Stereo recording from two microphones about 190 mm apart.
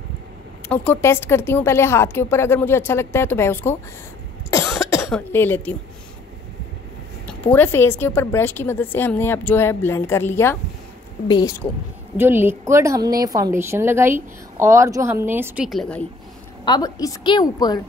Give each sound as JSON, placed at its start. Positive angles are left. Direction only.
{"t": 0.7, "sound": "a woman's voice", "side_deg": 10}
{"t": 4.5, "sound": "cough", "side_deg": 15}
{"t": 5.1, "sound": "a woman's voice", "side_deg": 10}
{"t": 7.4, "sound": "a woman's voice", "side_deg": 10}
{"t": 12.2, "sound": "a woman's voice", "side_deg": -10}
{"t": 16.6, "sound": "a woman's voice", "side_deg": 20}